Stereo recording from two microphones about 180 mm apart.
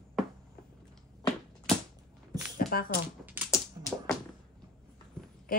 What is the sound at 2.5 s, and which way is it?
Shuffling cards, 55° left (ahead or behind).